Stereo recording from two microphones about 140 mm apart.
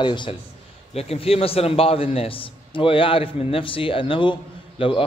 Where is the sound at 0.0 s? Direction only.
35° left (ahead or behind).